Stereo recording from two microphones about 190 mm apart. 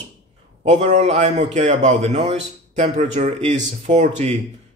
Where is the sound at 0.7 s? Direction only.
35° right (ahead or behind).